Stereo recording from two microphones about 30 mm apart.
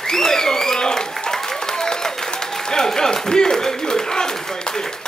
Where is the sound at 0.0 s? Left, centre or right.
Centre.